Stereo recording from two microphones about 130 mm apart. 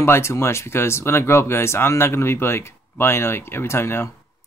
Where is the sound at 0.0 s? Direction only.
20° left (ahead or behind).